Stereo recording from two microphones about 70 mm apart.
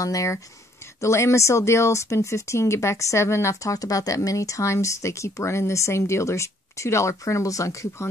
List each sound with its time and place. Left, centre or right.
0.0 s speech: left